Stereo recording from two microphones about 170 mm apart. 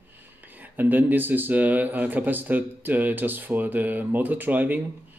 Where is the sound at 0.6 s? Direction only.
10° right (ahead or behind).